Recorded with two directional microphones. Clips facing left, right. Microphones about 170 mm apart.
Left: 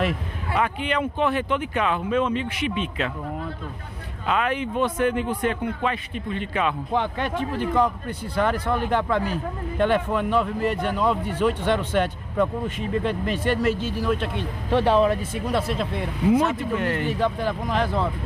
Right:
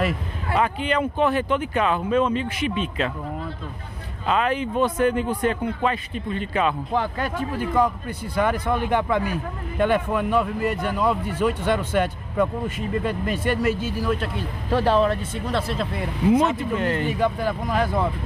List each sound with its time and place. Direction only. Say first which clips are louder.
0.6 s speech: right 2 dB; 35° right (ahead or behind)
4.3 s speech: right 2 dB; 35° right (ahead or behind)
6.9 s a man's voice: even; 5° right (ahead or behind)
16.3 s speech: right 1 dB; 25° right (ahead or behind)
17.1 s a man's voice: right 1 dB; 10° right (ahead or behind)